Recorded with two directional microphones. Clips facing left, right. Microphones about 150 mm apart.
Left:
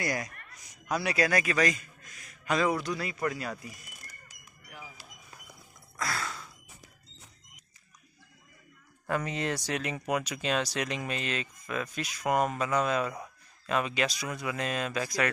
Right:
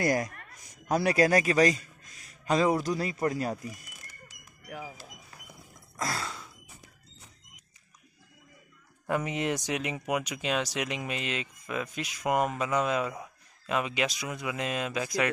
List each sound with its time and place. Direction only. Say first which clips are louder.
0.0 s a man's voice: right 6 dB; 45° right (ahead or behind)
4.3 s a sound: right 8 dB; 70° right (ahead or behind)
5.9 s gasp: right 1 dB; 35° right (ahead or behind)
9.0 s speech: right 2 dB; 15° right (ahead or behind)